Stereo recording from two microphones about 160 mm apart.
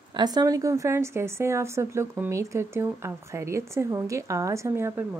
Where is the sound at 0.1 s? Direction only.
25° right (ahead or behind).